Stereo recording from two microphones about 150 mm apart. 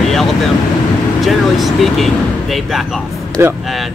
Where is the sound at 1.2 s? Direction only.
Centre (ahead or behind).